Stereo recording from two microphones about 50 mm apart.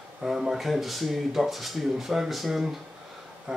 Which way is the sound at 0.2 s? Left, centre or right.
Centre.